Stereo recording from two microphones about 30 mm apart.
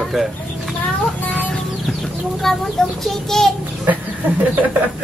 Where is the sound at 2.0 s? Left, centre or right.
Centre.